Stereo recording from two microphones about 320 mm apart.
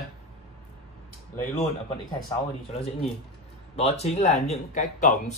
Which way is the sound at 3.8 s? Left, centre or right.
Centre.